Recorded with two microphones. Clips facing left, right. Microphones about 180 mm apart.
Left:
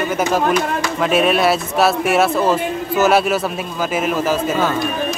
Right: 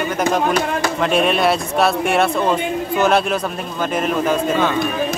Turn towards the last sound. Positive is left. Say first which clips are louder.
# even
turn(degrees=5)  # may be behind; listen again after turning